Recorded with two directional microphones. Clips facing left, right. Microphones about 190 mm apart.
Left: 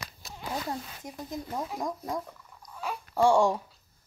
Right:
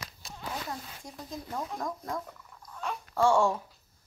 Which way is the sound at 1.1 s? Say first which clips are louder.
Left 3 dB; 15° left (ahead or behind).